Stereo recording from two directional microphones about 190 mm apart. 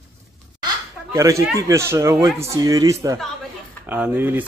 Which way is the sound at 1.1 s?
15° right (ahead or behind).